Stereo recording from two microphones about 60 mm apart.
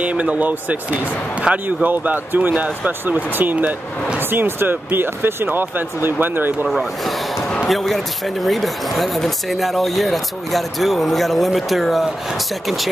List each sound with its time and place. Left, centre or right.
0.0 s speech: right
3.3 s speech: right
6.7 s speech: centre